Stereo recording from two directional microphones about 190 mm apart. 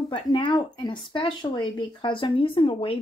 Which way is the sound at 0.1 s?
25° left (ahead or behind).